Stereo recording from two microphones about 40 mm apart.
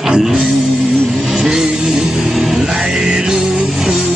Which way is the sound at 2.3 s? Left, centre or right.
Centre.